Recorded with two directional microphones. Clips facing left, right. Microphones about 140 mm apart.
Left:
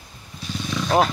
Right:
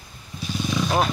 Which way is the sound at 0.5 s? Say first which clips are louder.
Right 2 dB; 10° right (ahead or behind).